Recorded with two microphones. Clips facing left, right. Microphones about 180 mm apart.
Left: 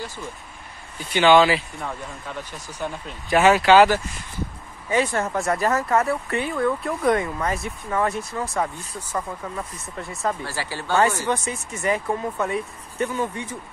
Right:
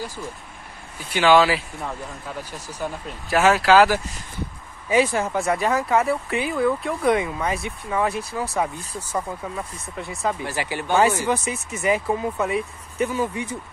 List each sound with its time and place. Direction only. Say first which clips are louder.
0.9 s speech: left 1 dB; 5° right (ahead or behind)
4.8 s speech: right 3 dB; 15° right (ahead or behind)
5.1 s speech: right 1 dB; centre (ahead or behind)
10.4 s speech: right 3 dB; 20° right (ahead or behind)